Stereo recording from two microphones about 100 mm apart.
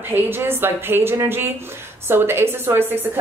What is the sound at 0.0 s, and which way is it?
A woman's voice, 20° right (ahead or behind).